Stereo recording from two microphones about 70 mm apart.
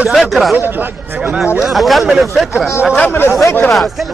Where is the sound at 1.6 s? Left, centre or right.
Centre.